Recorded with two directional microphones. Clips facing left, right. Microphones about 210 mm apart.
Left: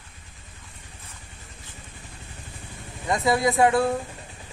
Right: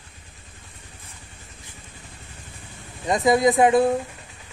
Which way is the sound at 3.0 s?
20° right (ahead or behind).